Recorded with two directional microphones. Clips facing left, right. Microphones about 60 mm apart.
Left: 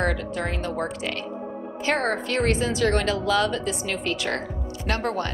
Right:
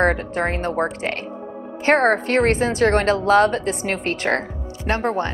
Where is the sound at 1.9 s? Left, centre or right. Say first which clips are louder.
Right 8 dB; right.